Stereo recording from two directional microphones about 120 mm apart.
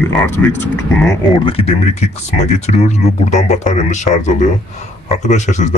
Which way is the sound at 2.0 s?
65° left (ahead or behind).